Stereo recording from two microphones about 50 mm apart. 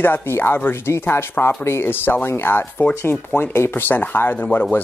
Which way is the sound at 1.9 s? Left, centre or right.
Left.